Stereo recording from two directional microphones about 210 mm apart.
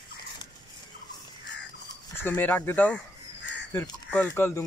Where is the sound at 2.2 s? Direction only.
10° left (ahead or behind).